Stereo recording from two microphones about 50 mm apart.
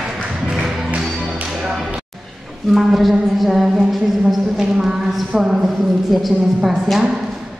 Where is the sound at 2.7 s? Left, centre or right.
Centre.